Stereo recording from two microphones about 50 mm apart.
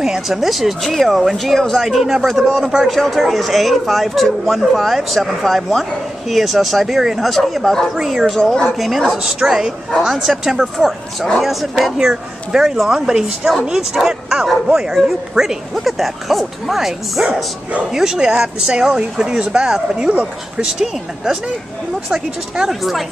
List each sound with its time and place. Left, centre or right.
0.0 s a man's voice: centre
2.9 s a man's voice: centre
7.9 s a man's voice: centre
20.1 s speech: right
20.6 s a man's voice: centre